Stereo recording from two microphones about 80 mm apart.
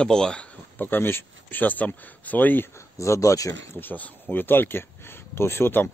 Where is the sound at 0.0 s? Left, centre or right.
Centre; by 3.7 s left.